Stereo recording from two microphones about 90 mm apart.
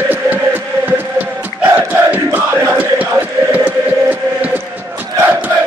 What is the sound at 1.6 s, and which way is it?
Crowd, 20° right (ahead or behind).